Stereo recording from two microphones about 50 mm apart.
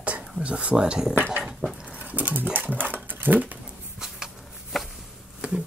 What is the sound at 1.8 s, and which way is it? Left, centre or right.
Sewing machine, right.